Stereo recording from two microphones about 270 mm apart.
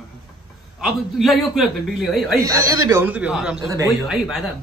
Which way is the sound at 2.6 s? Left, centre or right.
Centre.